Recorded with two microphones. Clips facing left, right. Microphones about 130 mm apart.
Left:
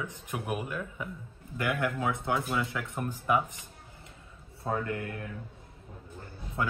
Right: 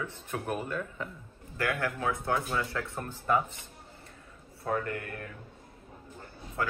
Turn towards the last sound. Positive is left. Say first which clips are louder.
# left 1 dB
turn(degrees=20)  # may be behind; listen again after turning